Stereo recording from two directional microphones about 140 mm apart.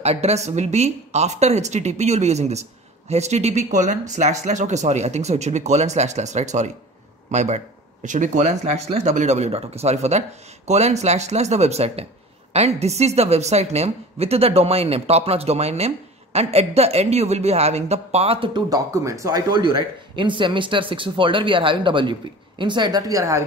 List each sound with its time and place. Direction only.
0.0 s a woman's voice: 50° right (ahead or behind)
18.7 s a woman's voice: 25° right (ahead or behind)